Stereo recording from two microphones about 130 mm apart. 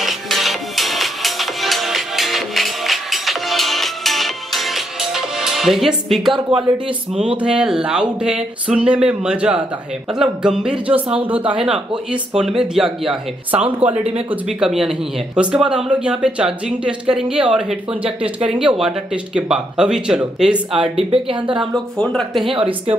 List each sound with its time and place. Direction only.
0.0 s music: centre (ahead or behind)
6.5 s speech: 45° right (ahead or behind)
7.2 s speech: 10° right (ahead or behind)
14.3 s speech: 5° right (ahead or behind)
21.1 s speech: 40° right (ahead or behind)
21.5 s speech: 5° left (ahead or behind)
22.5 s speech: 45° right (ahead or behind)